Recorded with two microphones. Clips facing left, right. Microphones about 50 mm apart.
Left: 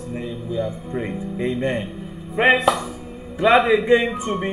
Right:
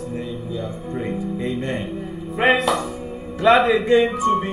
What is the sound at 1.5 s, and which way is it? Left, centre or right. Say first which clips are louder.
Speech: left 2 dB; left.